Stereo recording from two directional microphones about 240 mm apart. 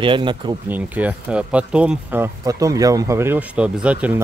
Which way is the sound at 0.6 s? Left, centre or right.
Centre.